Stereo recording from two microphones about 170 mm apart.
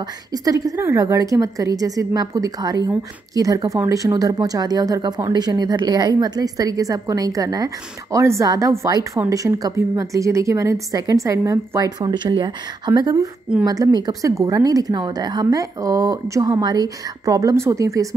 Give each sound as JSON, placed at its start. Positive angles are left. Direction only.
{"t": 0.3, "sound": "speech", "side_deg": -20}